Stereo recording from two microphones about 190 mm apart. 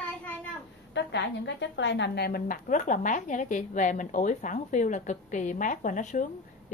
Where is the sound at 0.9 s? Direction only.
70° left (ahead or behind).